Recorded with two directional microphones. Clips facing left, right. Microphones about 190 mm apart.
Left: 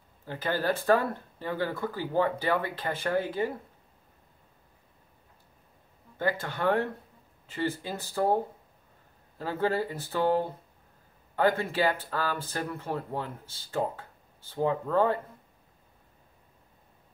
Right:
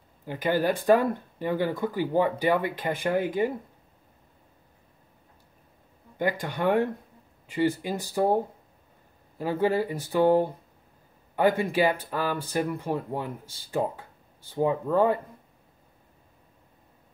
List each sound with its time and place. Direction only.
0.2 s speech: 15° right (ahead or behind)
6.1 s speech: 15° right (ahead or behind)
9.4 s speech: 15° right (ahead or behind)